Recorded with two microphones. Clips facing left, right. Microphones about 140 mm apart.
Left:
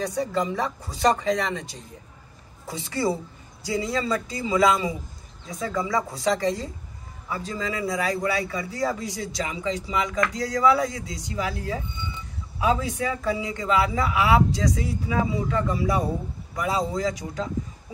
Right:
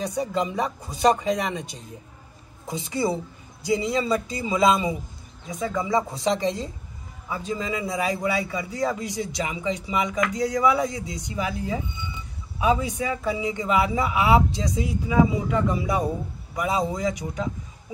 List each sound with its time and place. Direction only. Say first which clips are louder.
0.0 s a man's voice: even; 20° right (ahead or behind)